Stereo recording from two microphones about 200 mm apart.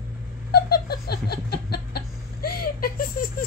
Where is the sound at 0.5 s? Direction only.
50° left (ahead or behind).